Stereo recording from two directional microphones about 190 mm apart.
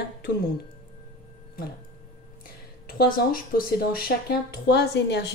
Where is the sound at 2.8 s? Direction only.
50° left (ahead or behind).